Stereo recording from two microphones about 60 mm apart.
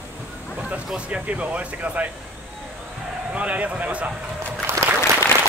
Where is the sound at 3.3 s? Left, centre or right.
Right.